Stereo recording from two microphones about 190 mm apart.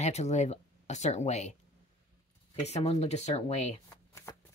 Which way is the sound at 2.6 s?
35° left (ahead or behind).